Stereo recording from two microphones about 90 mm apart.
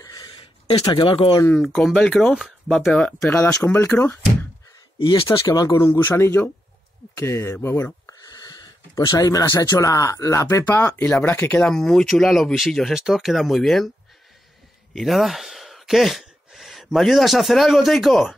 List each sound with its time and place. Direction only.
0.0 s a sound: 45° left (ahead or behind)
0.4 s a sound: 90° left
0.8 s speech: 65° left (ahead or behind)
1.6 s speech: centre (ahead or behind)
3.6 s speech: 25° left (ahead or behind)
5.0 s speech: 65° left (ahead or behind)
5.5 s speech: 45° left (ahead or behind)
5.9 s speech: 30° left (ahead or behind)
11.4 s speech: 10° left (ahead or behind)
15.0 s speech: centre (ahead or behind)